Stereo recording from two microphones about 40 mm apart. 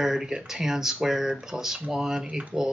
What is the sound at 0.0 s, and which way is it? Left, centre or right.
Speech, centre.